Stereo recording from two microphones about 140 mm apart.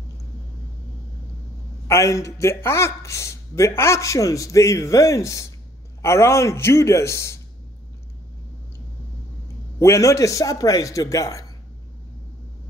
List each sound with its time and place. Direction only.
1.9 s speech: 20° left (ahead or behind)
9.8 s speech: 20° left (ahead or behind)